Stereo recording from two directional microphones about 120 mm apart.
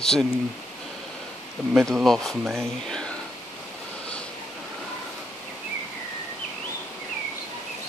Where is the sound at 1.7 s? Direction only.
Centre (ahead or behind).